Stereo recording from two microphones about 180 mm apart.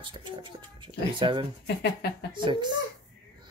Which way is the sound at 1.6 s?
65° left (ahead or behind).